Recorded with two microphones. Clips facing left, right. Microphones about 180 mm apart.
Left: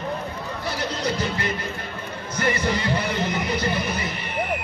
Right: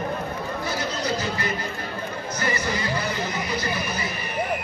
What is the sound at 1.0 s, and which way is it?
Speech, 60° left (ahead or behind).